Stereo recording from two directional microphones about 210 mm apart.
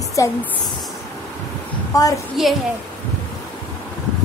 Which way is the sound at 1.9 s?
15° left (ahead or behind).